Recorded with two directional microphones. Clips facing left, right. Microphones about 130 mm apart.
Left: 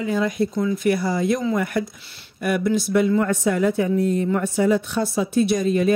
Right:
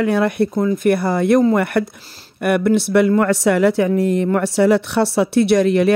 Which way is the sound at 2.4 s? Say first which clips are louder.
Right 5 dB; 60° right (ahead or behind).